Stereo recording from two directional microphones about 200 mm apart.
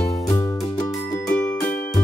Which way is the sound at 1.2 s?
10° left (ahead or behind).